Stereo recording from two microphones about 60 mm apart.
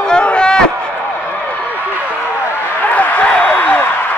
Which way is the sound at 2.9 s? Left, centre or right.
Left.